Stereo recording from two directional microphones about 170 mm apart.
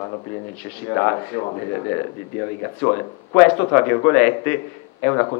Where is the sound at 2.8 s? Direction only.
30° left (ahead or behind).